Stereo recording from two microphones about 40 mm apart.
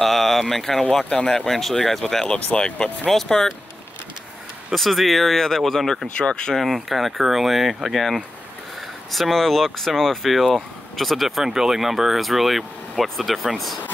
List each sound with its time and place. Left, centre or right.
0.0 s speech: centre
2.2 s speech: left
3.1 s speech: centre
4.7 s speech: centre
6.1 s speech: left
6.6 s speech: centre